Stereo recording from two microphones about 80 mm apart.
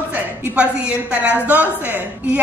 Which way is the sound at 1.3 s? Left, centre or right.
Centre.